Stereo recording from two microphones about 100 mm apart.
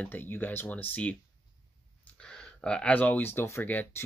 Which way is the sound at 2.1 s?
10° left (ahead or behind).